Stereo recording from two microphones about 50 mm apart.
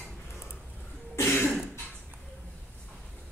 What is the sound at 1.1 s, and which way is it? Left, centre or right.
Cough, left.